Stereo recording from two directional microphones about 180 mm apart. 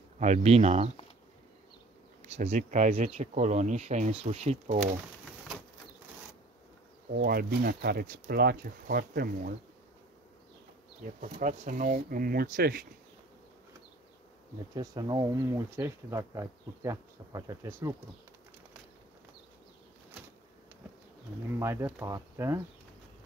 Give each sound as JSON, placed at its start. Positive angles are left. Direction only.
{"t": 0.2, "sound": "speech", "side_deg": -40}
{"t": 2.2, "sound": "speech", "side_deg": -35}
{"t": 7.1, "sound": "speech", "side_deg": -55}
{"t": 11.1, "sound": "speech", "side_deg": -45}
{"t": 14.7, "sound": "speech", "side_deg": -20}
{"t": 21.5, "sound": "speech", "side_deg": -15}